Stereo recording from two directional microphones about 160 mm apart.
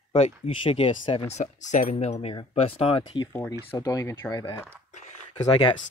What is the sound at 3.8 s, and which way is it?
Speech, 20° left (ahead or behind).